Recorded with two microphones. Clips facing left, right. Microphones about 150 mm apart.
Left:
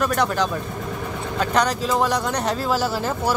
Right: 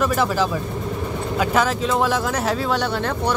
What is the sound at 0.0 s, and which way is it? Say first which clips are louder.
Speech: right 1 dB; centre (ahead or behind).